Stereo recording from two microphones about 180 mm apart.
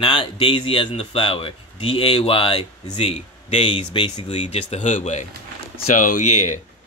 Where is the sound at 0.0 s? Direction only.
30° left (ahead or behind).